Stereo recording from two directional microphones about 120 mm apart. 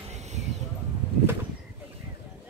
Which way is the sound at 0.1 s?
70° right (ahead or behind).